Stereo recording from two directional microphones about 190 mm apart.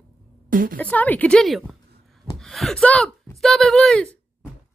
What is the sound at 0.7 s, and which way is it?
A woman's voice, 10° left (ahead or behind).